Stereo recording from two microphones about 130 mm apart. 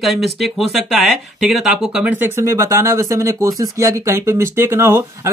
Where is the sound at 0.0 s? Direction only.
Centre (ahead or behind).